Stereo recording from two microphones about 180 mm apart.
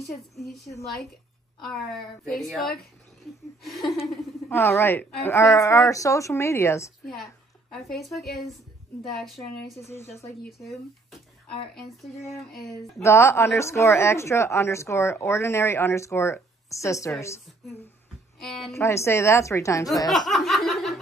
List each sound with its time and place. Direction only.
0.4 s a woman's voice: centre (ahead or behind)
4.5 s a woman's voice: 10° left (ahead or behind)
7.7 s a woman's voice: centre (ahead or behind)
9.8 s a woman's voice: 15° left (ahead or behind)
10.4 s a woman's voice: centre (ahead or behind)
12.5 s a woman's voice: centre (ahead or behind)
13.0 s a woman's voice: 15° left (ahead or behind)
18.4 s a woman's voice: centre (ahead or behind)
18.7 s a woman's voice: 15° left (ahead or behind)
20.1 s snicker: centre (ahead or behind)